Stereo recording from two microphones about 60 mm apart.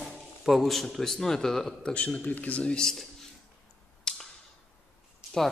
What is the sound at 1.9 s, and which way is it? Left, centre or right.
Speech, centre.